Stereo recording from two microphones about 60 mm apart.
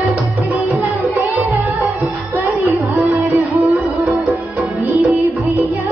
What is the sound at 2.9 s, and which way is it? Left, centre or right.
Music, right.